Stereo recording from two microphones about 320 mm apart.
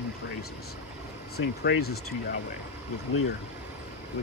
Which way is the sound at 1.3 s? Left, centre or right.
Left.